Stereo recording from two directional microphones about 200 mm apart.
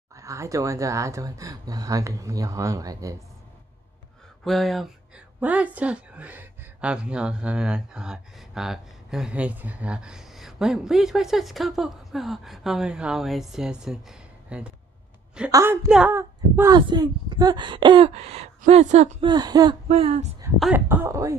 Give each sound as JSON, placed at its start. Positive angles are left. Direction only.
{"t": 0.1, "sound": "speech", "side_deg": -15}
{"t": 4.5, "sound": "a woman's voice", "side_deg": 0}
{"t": 19.2, "sound": "speech", "side_deg": -20}
{"t": 19.9, "sound": "speech", "side_deg": -30}
{"t": 20.5, "sound": "speech", "side_deg": -5}